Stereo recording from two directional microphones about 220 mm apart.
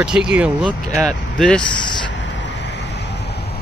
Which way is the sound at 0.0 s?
5° right (ahead or behind).